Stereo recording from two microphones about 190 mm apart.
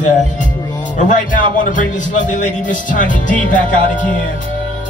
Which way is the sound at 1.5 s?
45° left (ahead or behind).